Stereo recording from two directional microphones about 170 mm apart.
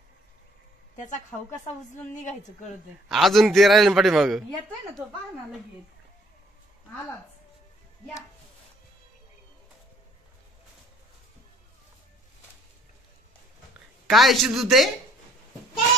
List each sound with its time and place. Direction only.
0.9 s a woman's voice: 45° left (ahead or behind)
3.1 s a man's voice: centre (ahead or behind)
14.0 s a man's voice: centre (ahead or behind)